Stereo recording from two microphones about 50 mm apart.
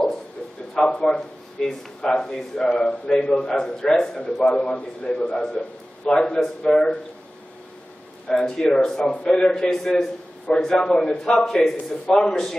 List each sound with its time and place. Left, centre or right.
0.8 s a man's voice: centre
8.3 s a man's voice: centre